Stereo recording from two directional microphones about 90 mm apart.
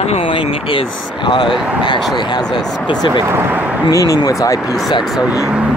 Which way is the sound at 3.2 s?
25° right (ahead or behind).